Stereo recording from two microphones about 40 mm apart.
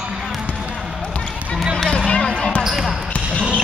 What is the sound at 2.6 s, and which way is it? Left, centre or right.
Basketball bounce, centre.